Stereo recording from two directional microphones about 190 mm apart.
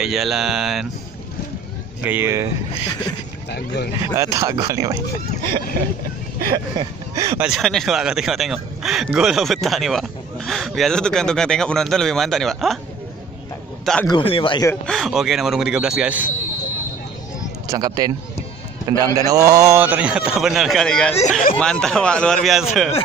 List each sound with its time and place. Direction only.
0.0 s speech: centre (ahead or behind)
2.0 s a man's voice: 10° right (ahead or behind)
3.5 s speech: 60° left (ahead or behind)
4.1 s a man's voice: 15° right (ahead or behind)
6.5 s a man's voice: 20° right (ahead or behind)
7.4 s speech: centre (ahead or behind)
14.0 s speech: 25° left (ahead or behind)
14.9 s speech: centre (ahead or behind)
17.6 s a man's voice: 20° right (ahead or behind); by 21.1 s 5° left (ahead or behind)
21.1 s speech: 40° left (ahead or behind)
21.5 s speech: 5° left (ahead or behind)